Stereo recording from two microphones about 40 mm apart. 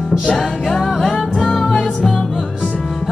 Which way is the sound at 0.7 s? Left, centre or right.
Centre.